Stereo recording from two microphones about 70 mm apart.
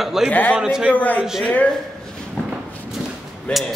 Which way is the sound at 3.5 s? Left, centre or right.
Centre.